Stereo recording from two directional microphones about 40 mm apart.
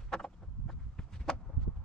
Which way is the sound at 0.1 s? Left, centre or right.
Centre.